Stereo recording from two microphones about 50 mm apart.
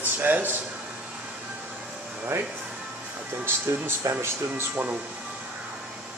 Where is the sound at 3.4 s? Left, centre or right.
Right.